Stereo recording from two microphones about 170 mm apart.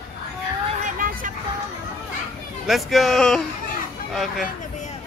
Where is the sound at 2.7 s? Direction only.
Centre (ahead or behind).